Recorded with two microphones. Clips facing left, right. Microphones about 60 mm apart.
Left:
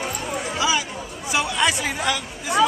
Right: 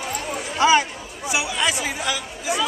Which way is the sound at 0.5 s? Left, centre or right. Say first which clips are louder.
Right 7 dB; right.